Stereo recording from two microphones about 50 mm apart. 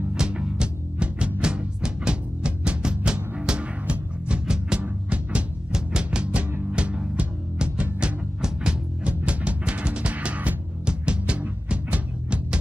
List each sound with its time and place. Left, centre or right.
0.1 s music: centre
8.4 s music: centre
9.0 s music: right